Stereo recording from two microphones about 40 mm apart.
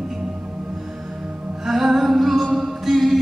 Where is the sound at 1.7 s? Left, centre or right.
Centre.